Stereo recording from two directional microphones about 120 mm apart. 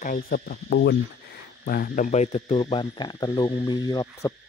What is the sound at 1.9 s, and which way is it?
Insect, 80° left.